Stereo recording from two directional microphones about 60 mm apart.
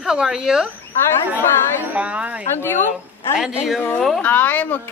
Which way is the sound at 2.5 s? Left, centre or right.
Left.